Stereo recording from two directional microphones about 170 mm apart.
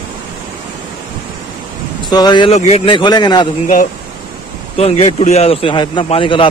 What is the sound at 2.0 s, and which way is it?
Speech, 25° left (ahead or behind).